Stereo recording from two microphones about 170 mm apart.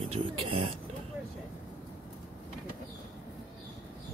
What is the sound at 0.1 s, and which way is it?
Speech, 35° right (ahead or behind).